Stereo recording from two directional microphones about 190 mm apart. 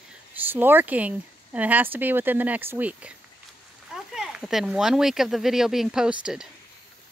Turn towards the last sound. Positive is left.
turn(degrees=-5)  # may be behind; listen again after turning